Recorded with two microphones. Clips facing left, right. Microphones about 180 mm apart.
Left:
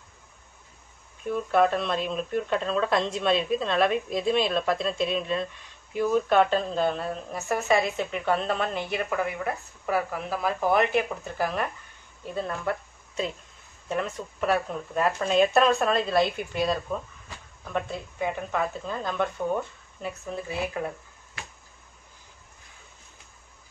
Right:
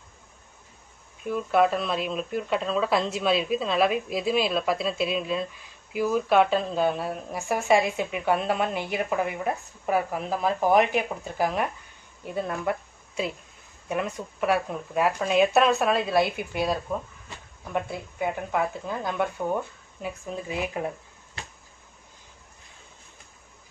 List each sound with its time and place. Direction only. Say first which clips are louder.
1.2 s a woman's voice: even; centre (ahead or behind); by 20.9 s 20° right (ahead or behind)